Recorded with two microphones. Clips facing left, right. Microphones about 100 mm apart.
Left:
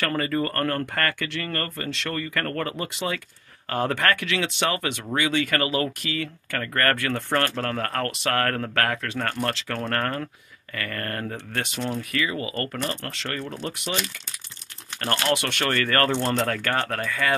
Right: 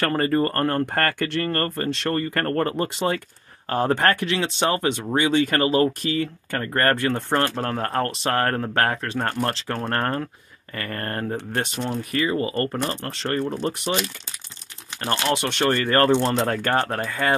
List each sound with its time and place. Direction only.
0.0 s speech: 40° right (ahead or behind)
0.9 s speech: 40° right (ahead or behind)
15.0 s speech: 20° right (ahead or behind)